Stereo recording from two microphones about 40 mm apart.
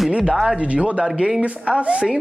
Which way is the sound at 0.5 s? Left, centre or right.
Right.